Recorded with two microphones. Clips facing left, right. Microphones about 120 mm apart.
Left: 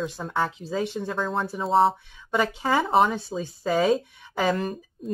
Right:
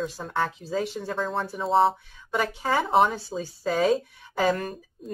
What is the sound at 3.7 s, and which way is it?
Speech, 20° left (ahead or behind).